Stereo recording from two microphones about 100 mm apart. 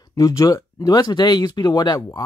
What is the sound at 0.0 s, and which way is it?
Speech, 35° left (ahead or behind).